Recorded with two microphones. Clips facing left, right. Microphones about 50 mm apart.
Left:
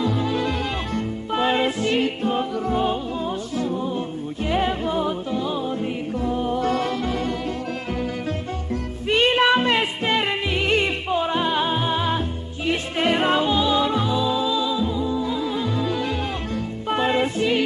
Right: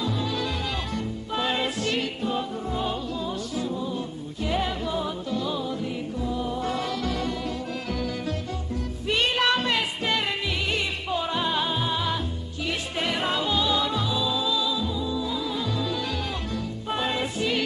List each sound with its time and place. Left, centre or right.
0.0 s music: left
2.2 s music: left
5.3 s music: left
5.8 s music: left
7.0 s music: left
10.7 s music: left
11.1 s music: left
13.5 s music: left